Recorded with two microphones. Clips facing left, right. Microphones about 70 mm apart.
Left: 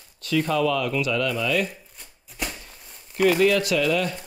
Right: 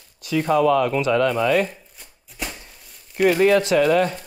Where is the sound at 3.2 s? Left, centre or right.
Right.